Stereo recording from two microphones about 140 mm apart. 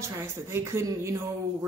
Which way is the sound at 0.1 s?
20° right (ahead or behind).